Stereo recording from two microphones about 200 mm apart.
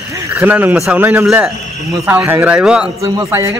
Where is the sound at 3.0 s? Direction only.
15° right (ahead or behind).